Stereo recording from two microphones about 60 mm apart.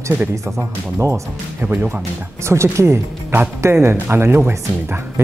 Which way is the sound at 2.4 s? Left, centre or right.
Right.